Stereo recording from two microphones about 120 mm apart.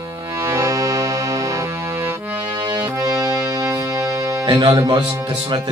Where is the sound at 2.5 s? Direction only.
35° right (ahead or behind).